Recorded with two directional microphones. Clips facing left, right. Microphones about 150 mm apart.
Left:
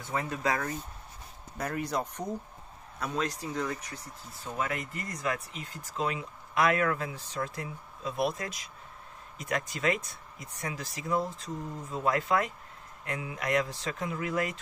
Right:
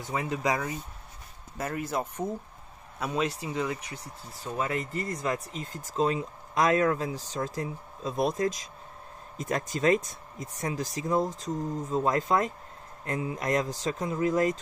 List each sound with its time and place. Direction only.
0.1 s speech: 15° right (ahead or behind)
4.6 s speech: 30° right (ahead or behind)
9.7 s speech: 40° right (ahead or behind)